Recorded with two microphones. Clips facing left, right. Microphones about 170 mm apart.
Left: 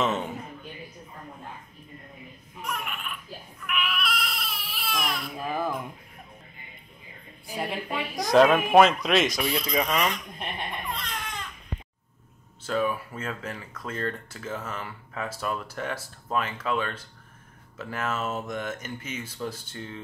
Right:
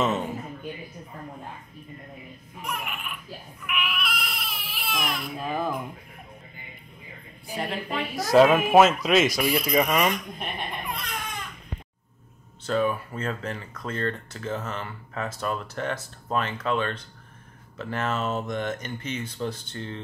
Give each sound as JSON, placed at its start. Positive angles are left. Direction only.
{"t": 0.0, "sound": "speech", "side_deg": 0}
{"t": 2.6, "sound": "speech", "side_deg": -5}
{"t": 3.6, "sound": "baby cry", "side_deg": -5}
{"t": 8.2, "sound": "speech", "side_deg": -5}
{"t": 10.4, "sound": "baby cry", "side_deg": -10}
{"t": 12.6, "sound": "speech", "side_deg": 5}